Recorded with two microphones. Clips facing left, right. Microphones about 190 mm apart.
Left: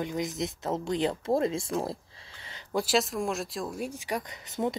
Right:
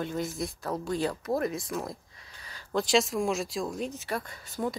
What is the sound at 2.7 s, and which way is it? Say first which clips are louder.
Speech: right 1 dB; 5° left (ahead or behind).